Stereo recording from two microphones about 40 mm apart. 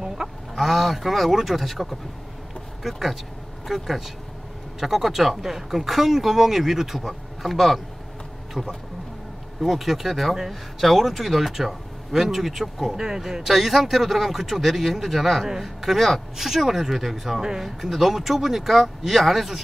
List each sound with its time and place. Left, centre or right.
0.2 s fowl: centre
0.6 s speech: centre
8.6 s speech: right
9.6 s speech: centre
12.9 s speech: centre